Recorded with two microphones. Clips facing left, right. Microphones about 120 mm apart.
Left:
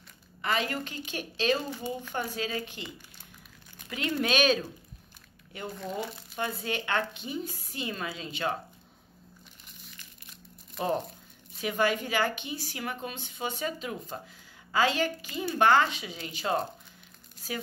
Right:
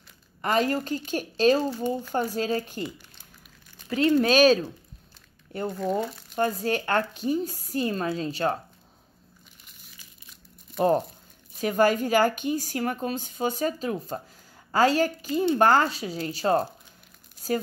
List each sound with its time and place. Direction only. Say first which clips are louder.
0.4 s a woman's voice: right 6 dB; 45° right (ahead or behind)
3.9 s a woman's voice: right 9 dB; 35° right (ahead or behind)
11.6 s a woman's voice: right 6 dB; 40° right (ahead or behind)